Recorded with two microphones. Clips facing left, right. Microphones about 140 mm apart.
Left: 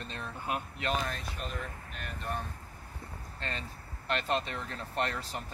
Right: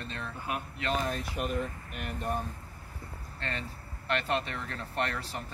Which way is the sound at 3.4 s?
20° left (ahead or behind).